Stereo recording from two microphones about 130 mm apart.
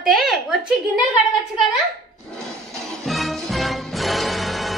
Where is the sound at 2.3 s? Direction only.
Centre (ahead or behind).